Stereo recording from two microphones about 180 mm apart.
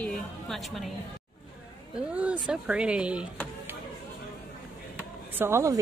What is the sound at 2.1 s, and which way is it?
A woman's voice, 5° right (ahead or behind).